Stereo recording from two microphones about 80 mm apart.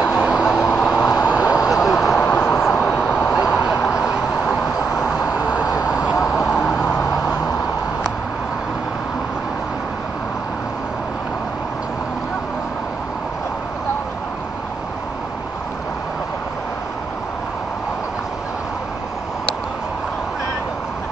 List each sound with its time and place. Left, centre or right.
0.1 s vehicle: centre
1.2 s vehicle: centre
1.7 s vehicle: centre
2.1 s vehicle: centre
2.5 s vehicle: centre
3.3 s a sound: centre
4.1 s vehicle: centre
5.6 s vehicle: left
5.9 s vehicle: centre
7.0 s vehicle: left